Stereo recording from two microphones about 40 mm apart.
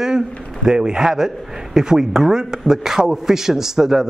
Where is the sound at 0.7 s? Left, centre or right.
Centre.